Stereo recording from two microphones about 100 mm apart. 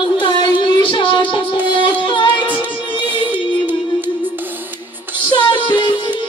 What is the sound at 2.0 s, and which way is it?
Music, 55° left (ahead or behind).